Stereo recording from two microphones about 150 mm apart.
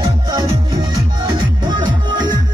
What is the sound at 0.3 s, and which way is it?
Music, 25° right (ahead or behind).